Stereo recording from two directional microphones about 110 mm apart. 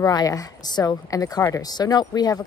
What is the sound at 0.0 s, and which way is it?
Speech, 35° left (ahead or behind).